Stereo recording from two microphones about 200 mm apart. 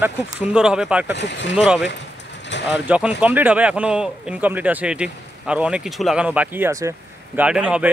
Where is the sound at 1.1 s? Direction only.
60° left (ahead or behind).